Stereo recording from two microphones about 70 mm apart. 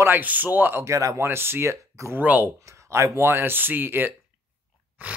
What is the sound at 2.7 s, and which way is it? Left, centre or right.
Speech, right.